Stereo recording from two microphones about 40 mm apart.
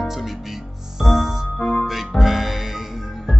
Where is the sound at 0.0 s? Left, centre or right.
Centre.